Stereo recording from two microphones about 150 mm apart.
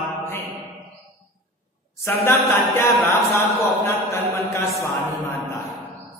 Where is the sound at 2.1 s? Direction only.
15° left (ahead or behind).